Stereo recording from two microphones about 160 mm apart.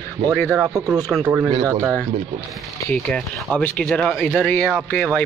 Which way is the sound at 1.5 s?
25° right (ahead or behind).